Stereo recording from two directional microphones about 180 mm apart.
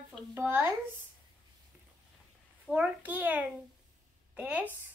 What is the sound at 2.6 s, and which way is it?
A child's voice, 5° right (ahead or behind).